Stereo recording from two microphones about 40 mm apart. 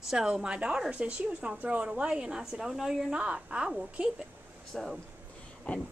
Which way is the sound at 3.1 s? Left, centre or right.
Right.